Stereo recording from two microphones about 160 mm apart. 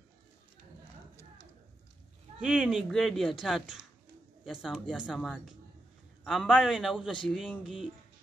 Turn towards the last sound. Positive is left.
turn(degrees=0)  # may be behind; listen again after turning